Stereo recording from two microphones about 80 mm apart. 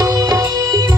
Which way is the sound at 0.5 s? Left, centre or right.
Right.